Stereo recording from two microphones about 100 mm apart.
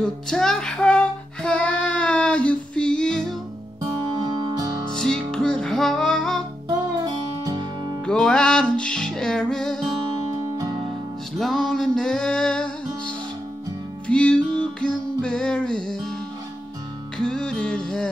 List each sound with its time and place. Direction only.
0.0 s music: 5° left (ahead or behind)
3.8 s music: 40° right (ahead or behind)
4.8 s music: 5° left (ahead or behind)
7.4 s music: 40° right (ahead or behind)
8.0 s music: 5° left (ahead or behind)
11.3 s music: 5° left (ahead or behind)
17.2 s music: 5° left (ahead or behind)